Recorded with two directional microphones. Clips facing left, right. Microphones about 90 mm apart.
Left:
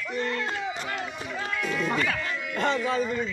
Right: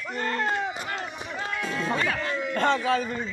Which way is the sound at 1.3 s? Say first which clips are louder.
Even; 20° right (ahead or behind).